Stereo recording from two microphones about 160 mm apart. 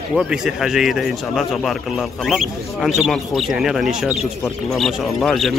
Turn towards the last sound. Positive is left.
turn(degrees=0)  # may be behind; listen again after turning